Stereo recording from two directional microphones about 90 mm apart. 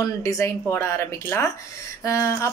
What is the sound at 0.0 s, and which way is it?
Speech, 40° left (ahead or behind).